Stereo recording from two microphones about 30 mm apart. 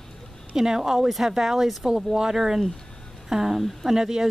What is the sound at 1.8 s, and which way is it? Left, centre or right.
Speech, right.